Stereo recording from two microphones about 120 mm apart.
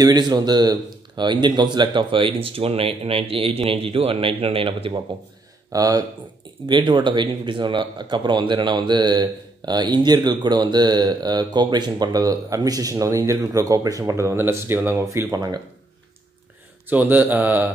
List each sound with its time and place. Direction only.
0.0 s speech: 35° right (ahead or behind)
5.7 s speech: 30° right (ahead or behind)
16.8 s speech: 15° right (ahead or behind)